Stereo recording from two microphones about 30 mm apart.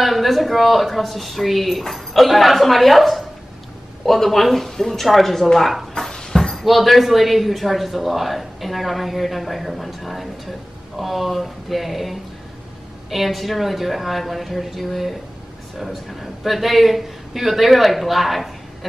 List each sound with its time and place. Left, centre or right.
0.0 s speech: centre
6.1 s a sound: centre
6.5 s speech: centre